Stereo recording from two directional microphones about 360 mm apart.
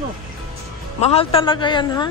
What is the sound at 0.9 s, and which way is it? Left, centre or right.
A woman's voice, centre.